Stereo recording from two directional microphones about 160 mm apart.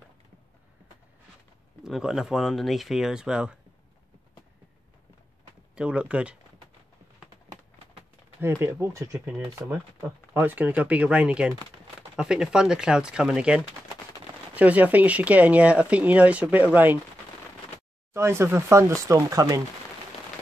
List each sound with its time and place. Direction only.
1.8 s speech: 5° right (ahead or behind)
5.8 s speech: 5° right (ahead or behind)
8.4 s speech: 15° right (ahead or behind)
18.1 s speech: 15° right (ahead or behind)